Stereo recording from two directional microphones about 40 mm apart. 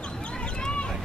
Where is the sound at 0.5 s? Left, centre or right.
Left.